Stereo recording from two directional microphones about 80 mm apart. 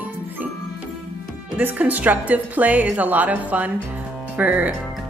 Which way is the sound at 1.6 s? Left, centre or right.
Centre.